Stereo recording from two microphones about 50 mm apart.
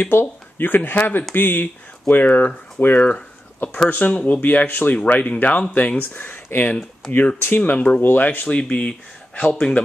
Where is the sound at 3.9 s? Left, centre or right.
Left.